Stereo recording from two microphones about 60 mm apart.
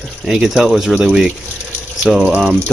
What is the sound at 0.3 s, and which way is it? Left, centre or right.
Speech, centre.